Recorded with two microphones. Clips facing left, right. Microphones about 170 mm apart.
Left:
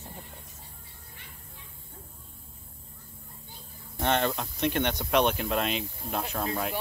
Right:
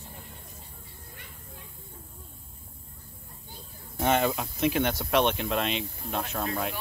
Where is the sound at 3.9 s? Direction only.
5° right (ahead or behind).